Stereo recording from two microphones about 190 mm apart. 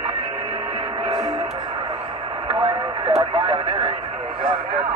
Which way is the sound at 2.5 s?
30° right (ahead or behind).